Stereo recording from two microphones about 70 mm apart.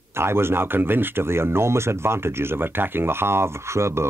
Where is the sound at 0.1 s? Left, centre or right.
Right.